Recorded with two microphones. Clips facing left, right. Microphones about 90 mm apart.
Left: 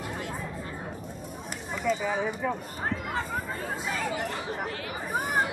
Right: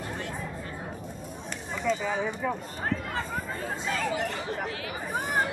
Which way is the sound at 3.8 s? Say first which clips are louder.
Right 2 dB; 5° left (ahead or behind).